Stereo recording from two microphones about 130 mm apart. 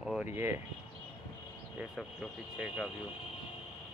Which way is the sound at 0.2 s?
20° right (ahead or behind).